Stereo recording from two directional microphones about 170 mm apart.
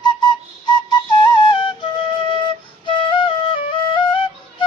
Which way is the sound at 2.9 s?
30° left (ahead or behind).